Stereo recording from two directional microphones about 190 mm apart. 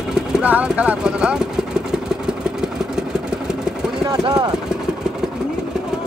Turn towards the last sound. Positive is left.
turn(degrees=-20)  # may be behind; listen again after turning